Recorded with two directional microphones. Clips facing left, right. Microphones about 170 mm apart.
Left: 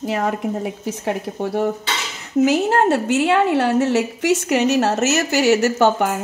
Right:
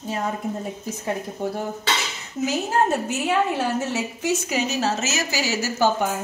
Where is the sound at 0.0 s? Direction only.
85° left.